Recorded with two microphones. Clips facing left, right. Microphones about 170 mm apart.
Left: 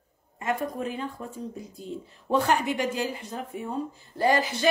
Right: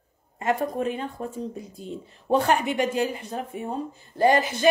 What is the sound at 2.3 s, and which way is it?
Speech, 60° right (ahead or behind).